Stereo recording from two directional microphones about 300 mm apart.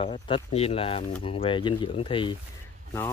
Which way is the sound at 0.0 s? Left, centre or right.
Centre.